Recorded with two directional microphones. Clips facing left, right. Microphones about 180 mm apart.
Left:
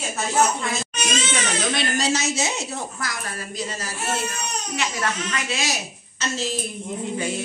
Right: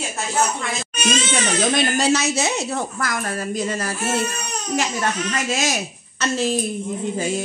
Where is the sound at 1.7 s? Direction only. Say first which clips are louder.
Right 5 dB; 50° right (ahead or behind).